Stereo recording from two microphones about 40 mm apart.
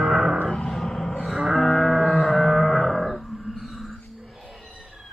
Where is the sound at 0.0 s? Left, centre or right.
Centre.